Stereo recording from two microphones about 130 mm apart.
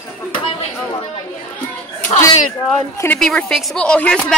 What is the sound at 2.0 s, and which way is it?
Speech, 65° left (ahead or behind).